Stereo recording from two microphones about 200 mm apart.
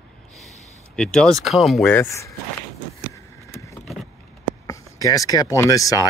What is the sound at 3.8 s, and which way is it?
Vehicle, centre (ahead or behind).